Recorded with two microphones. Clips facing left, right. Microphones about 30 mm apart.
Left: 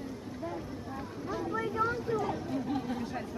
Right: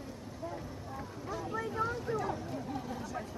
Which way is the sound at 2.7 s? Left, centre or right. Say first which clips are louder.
Left 5 dB; left.